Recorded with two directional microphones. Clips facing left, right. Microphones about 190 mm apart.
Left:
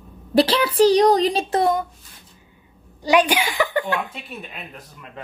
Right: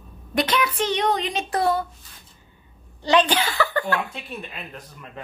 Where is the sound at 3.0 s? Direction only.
10° left (ahead or behind).